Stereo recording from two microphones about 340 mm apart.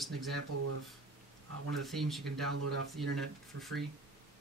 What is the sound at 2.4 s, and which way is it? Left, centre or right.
Speech, right.